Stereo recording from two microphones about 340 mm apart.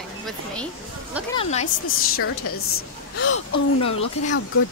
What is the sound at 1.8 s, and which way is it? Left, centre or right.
A woman's voice, left.